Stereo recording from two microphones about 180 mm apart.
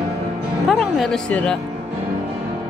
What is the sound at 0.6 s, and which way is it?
Music, centre (ahead or behind).